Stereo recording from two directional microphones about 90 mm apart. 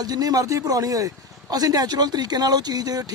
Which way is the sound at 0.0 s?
45° right (ahead or behind).